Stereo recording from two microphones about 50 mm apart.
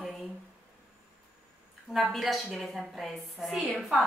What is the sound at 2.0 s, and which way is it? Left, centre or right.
A woman's voice, centre.